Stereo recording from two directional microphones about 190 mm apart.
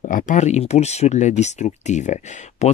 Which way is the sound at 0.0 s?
45° left (ahead or behind).